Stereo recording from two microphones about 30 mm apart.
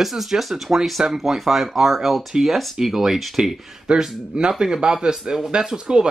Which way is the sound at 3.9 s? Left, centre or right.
Right.